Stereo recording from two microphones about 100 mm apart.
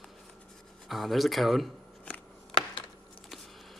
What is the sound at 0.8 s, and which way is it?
Speech, centre (ahead or behind).